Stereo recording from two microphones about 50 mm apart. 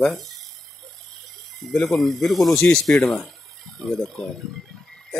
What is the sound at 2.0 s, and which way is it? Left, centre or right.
Speech, centre.